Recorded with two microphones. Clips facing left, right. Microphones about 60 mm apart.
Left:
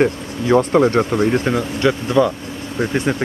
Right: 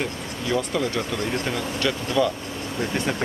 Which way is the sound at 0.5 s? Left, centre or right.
Left.